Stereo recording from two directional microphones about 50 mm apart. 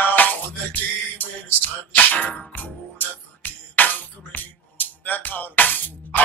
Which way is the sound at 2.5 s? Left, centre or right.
Left.